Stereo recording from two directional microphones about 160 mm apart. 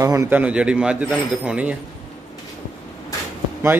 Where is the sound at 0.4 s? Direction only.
5° right (ahead or behind).